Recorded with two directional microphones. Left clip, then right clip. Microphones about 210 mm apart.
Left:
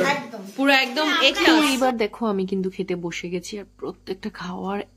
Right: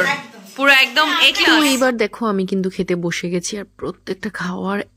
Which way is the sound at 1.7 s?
20° right (ahead or behind).